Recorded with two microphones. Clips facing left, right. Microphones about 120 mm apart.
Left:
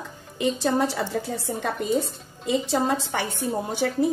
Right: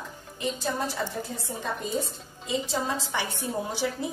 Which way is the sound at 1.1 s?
90° left.